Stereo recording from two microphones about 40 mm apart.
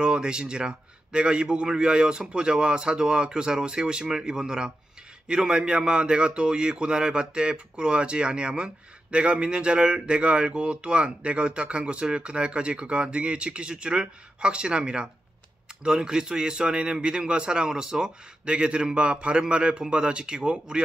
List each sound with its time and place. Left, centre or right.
0.0 s a man's voice: right